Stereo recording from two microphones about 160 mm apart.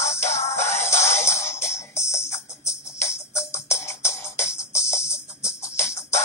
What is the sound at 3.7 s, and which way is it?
Music, 15° left (ahead or behind).